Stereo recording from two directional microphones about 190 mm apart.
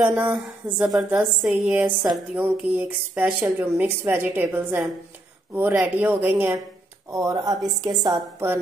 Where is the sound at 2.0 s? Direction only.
5° right (ahead or behind).